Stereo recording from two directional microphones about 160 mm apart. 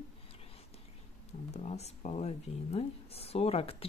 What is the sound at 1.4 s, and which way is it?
Speech, 45° left (ahead or behind).